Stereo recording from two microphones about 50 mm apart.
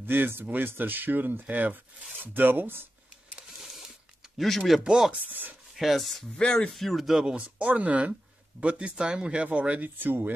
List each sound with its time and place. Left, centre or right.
0.0 s speech: right
4.4 s speech: centre
5.2 s speech: right
5.8 s speech: centre
6.3 s speech: centre
6.8 s speech: centre
7.2 s speech: right
9.8 s speech: right